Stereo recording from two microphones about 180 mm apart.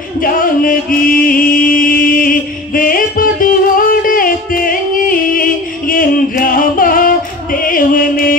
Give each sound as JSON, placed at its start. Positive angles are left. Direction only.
{"t": 0.2, "sound": "music", "side_deg": 50}